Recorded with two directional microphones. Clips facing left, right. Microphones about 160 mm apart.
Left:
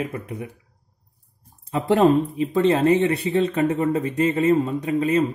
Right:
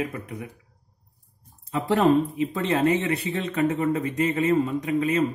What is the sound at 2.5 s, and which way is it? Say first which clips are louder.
Speech: left 6 dB; 30° left (ahead or behind).